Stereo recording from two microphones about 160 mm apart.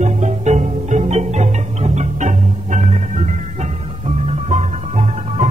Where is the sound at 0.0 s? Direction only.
45° right (ahead or behind).